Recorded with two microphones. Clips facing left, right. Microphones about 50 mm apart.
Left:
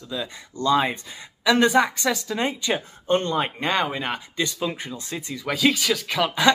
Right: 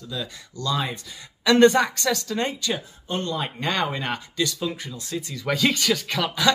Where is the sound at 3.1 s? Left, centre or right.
Left.